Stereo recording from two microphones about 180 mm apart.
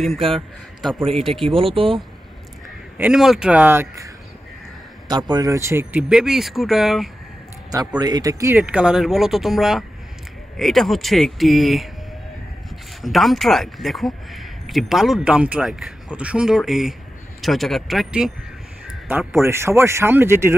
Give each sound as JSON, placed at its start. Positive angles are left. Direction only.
{"t": 1.2, "sound": "speech", "side_deg": 0}
{"t": 1.5, "sound": "speech", "side_deg": -30}
{"t": 3.0, "sound": "speech", "side_deg": -5}
{"t": 8.0, "sound": "speech", "side_deg": -20}
{"t": 8.5, "sound": "speech", "side_deg": -5}
{"t": 13.0, "sound": "speech", "side_deg": 0}